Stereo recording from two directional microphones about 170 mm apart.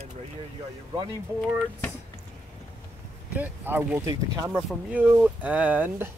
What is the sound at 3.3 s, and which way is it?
Speech, 10° right (ahead or behind).